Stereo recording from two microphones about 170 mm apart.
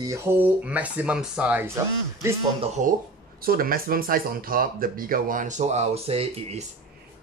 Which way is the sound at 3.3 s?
60° right (ahead or behind).